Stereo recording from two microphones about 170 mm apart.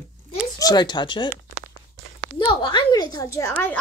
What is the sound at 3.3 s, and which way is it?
Speech, 15° left (ahead or behind).